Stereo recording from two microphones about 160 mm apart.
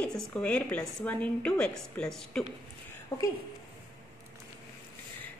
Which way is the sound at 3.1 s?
20° left (ahead or behind).